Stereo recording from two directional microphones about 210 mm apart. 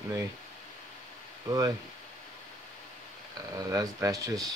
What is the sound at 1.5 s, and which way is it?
Speech, 20° right (ahead or behind).